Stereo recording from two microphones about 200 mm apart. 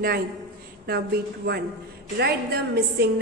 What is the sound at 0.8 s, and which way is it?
A woman's voice, 50° right (ahead or behind).